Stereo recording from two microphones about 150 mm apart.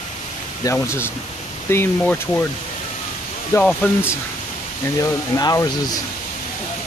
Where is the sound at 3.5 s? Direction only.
10° left (ahead or behind).